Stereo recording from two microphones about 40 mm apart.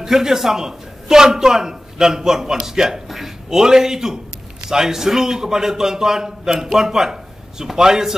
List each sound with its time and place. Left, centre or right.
0.0 s a man's voice: centre